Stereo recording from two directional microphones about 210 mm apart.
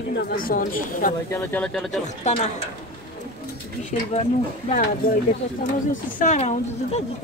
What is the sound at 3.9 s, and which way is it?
A woman's voice, 35° left (ahead or behind).